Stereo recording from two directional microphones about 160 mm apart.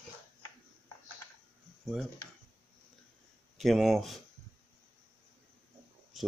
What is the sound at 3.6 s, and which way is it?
Speech, centre (ahead or behind).